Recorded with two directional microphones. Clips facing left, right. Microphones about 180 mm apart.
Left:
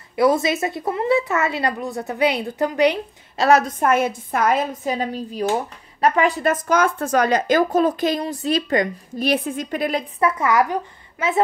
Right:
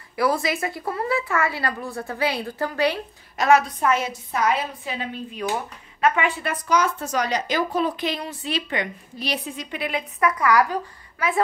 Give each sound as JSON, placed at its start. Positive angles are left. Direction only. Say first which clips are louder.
{"t": 0.1, "sound": "a woman's voice", "louder": "left 5 dB", "side_deg": 20}
{"t": 3.3, "sound": "a woman's voice", "louder": "left 2 dB", "side_deg": 40}
{"t": 10.3, "sound": "a woman's voice", "louder": "right 1 dB", "side_deg": 25}